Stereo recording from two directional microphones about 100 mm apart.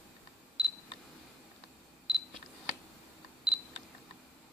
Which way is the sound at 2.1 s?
10° right (ahead or behind).